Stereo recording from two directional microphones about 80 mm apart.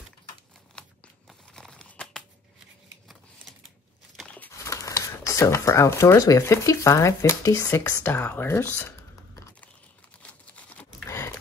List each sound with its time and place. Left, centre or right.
0.7 s tearing: centre
4.6 s speech: left
8.0 s speech: left
10.2 s a sound: centre